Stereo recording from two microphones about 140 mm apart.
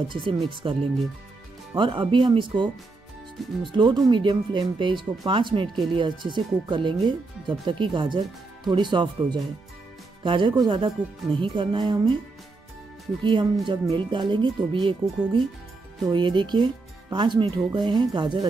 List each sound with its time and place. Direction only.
0.1 s speech: 35° right (ahead or behind)
1.8 s speech: 35° right (ahead or behind)
13.2 s speech: 35° right (ahead or behind)